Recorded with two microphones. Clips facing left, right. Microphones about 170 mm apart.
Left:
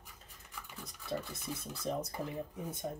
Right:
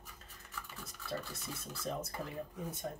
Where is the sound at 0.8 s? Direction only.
15° left (ahead or behind).